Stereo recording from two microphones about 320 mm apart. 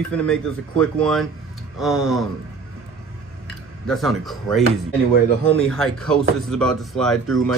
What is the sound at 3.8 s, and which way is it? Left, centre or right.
Speech, centre.